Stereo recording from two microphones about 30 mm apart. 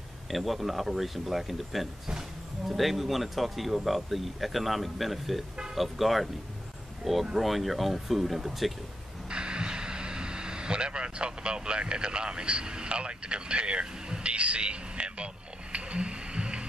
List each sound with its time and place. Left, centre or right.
0.3 s speech: centre
7.3 s speech: centre
9.3 s speech: right
14.2 s a sound: right